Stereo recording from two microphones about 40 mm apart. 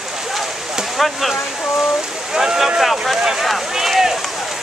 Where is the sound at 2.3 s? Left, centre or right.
Centre.